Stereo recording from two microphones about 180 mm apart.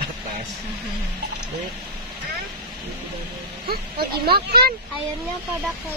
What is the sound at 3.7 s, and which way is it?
Speech, 60° right (ahead or behind).